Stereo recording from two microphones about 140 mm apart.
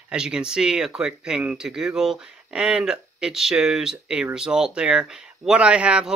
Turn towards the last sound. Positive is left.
turn(degrees=-10)  # may be behind; listen again after turning